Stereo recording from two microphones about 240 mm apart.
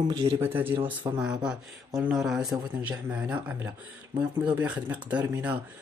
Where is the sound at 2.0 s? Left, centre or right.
Centre.